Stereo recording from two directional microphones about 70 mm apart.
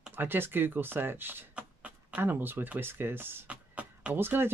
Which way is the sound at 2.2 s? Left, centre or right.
Right.